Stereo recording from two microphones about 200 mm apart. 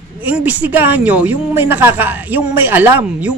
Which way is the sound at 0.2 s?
10° right (ahead or behind).